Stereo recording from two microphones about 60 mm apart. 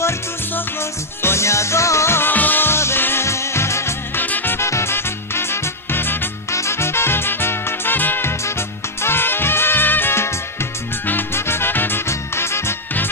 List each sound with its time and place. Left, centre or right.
1.2 s music: left
2.3 s music: left
4.2 s swing music: left
4.6 s music: left
6.5 s music: left
12.1 s music: left